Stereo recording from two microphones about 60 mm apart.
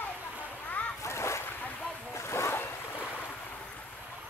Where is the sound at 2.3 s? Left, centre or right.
Left.